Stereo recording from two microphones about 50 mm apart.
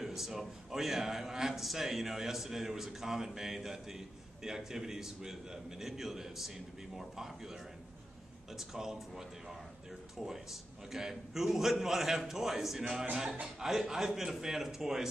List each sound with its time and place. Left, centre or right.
0.0 s a man's voice: centre